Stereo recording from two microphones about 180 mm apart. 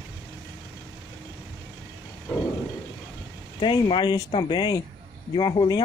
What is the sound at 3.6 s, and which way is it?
Speech, 25° left (ahead or behind).